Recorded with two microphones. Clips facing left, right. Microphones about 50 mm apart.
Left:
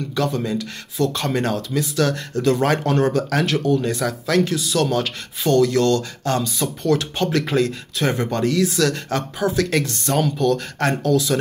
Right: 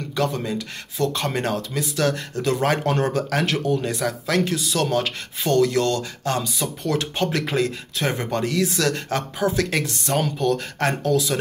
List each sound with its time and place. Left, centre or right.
0.1 s speech: right
1.1 s speech: right